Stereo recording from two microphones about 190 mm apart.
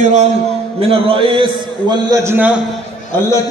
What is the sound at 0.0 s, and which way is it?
A man's voice, 40° right (ahead or behind).